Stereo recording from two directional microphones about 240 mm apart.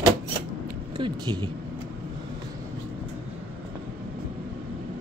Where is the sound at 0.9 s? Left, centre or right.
Centre.